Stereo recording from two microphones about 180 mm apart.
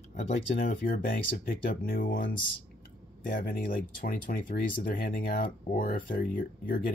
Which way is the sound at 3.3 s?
50° left (ahead or behind).